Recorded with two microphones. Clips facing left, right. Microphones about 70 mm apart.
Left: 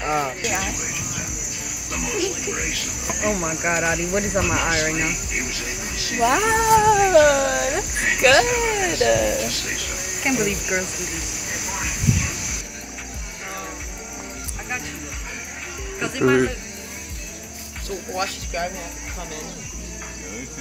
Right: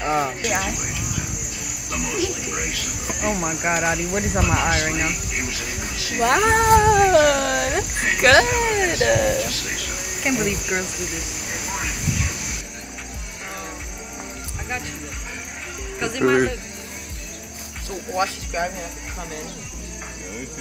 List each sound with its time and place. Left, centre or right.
0.5 s speech: centre
3.1 s speech: centre
6.2 s speech: right
10.2 s speech: centre
16.0 s speech: centre
18.1 s speech: right